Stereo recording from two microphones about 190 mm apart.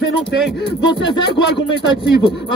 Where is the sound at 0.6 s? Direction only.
60° left (ahead or behind).